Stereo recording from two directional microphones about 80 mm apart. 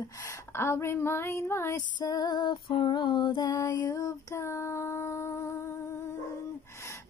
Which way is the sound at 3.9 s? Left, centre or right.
Left.